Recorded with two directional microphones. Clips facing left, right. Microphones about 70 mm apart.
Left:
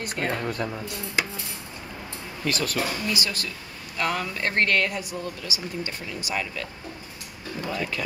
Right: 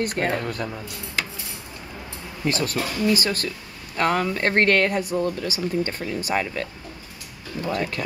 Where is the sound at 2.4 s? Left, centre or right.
Right.